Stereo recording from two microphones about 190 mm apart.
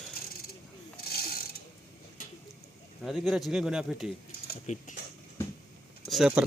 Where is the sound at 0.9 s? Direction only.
55° left (ahead or behind).